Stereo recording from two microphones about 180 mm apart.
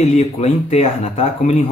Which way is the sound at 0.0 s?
40° left (ahead or behind).